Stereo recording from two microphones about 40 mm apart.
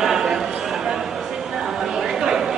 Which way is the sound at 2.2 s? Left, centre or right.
Centre.